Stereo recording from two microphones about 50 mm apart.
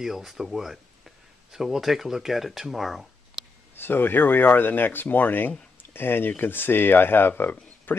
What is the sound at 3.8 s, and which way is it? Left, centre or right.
Speech, left.